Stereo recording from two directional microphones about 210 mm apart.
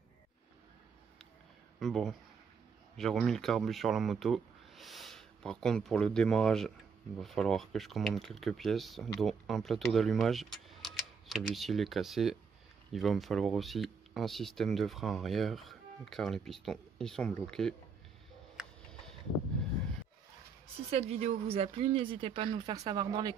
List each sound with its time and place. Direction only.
1.8 s speech: centre (ahead or behind)
20.9 s speech: 30° right (ahead or behind)